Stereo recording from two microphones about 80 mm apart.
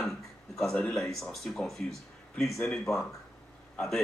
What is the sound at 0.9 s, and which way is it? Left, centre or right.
Speech, centre.